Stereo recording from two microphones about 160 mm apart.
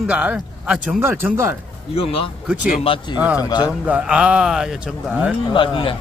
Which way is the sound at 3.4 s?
25° left (ahead or behind).